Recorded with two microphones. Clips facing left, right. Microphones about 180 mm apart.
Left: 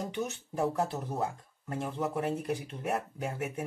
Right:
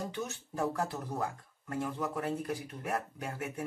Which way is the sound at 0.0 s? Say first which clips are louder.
Left 3 dB; 20° left (ahead or behind).